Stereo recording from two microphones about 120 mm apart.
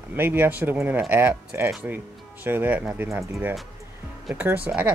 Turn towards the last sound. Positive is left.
turn(degrees=-10)  # may be behind; listen again after turning